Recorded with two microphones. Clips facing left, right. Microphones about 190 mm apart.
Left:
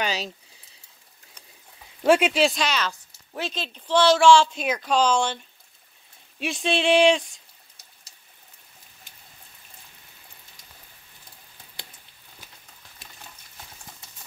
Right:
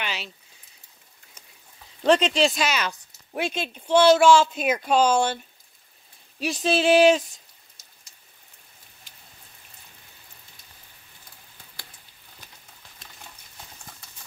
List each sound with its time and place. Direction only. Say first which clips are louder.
0.0 s a sound: left 5 dB; 40° left (ahead or behind)
2.0 s speech: left 1 dB; 10° left (ahead or behind); by 5.4 s 5° right (ahead or behind)
6.4 s speech: right 2 dB; centre (ahead or behind)